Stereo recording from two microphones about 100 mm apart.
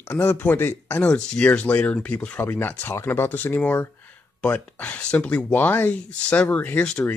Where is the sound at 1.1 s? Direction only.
10° left (ahead or behind).